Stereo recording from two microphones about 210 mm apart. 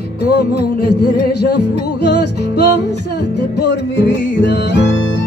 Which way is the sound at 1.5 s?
55° left (ahead or behind).